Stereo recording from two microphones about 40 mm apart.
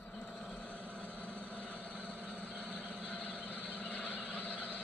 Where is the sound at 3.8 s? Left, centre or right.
Left.